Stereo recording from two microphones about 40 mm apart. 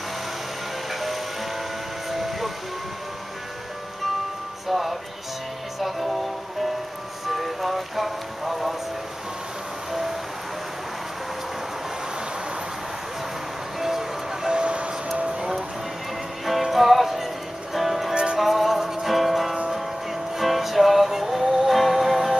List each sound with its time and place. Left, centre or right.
2.0 s train: centre
4.6 s music: centre
13.7 s music: centre
15.1 s a sound: right
16.4 s music: centre
18.1 s music: right
18.4 s music: centre